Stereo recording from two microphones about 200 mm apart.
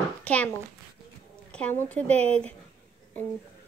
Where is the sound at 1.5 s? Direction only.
10° left (ahead or behind).